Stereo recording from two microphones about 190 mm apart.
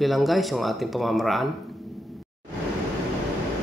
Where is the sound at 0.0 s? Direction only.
Centre (ahead or behind).